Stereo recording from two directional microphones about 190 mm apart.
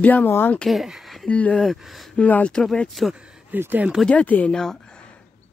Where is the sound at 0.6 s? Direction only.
Centre (ahead or behind).